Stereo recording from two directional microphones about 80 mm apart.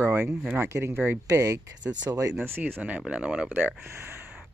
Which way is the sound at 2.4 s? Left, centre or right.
Right.